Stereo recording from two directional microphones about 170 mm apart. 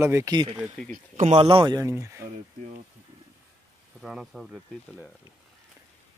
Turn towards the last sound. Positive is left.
turn(degrees=0)  # may be behind; listen again after turning